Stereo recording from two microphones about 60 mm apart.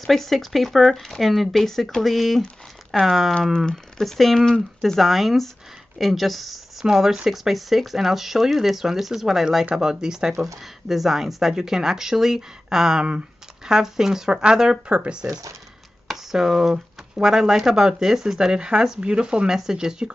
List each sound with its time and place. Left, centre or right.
0.0 s speech: centre
15.2 s speech: right
16.1 s speech: centre